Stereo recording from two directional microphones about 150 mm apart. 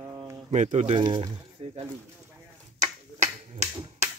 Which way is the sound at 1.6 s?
40° right (ahead or behind).